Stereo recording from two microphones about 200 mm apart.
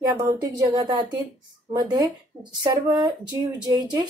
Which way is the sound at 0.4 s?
20° right (ahead or behind).